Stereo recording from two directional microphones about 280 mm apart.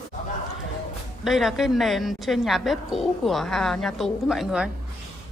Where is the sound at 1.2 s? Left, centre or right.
Centre.